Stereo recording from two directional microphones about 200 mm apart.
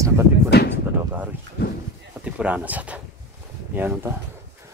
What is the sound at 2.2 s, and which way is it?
Speech, 5° right (ahead or behind).